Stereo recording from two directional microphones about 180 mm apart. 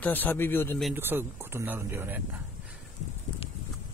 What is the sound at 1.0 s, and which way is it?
Speech, 10° right (ahead or behind).